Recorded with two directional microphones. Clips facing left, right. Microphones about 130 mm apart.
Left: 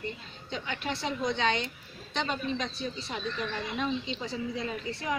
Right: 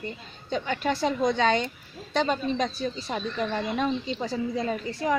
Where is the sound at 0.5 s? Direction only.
40° right (ahead or behind).